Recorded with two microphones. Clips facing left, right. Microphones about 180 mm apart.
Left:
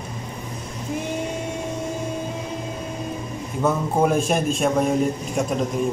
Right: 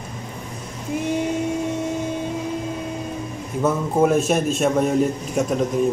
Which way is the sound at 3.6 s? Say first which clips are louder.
Right 2 dB; centre (ahead or behind).